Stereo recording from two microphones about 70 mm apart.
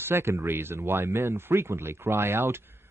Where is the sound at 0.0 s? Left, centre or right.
Right.